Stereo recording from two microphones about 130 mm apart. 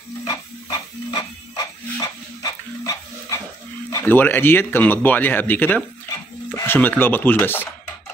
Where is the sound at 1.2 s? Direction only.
30° left (ahead or behind).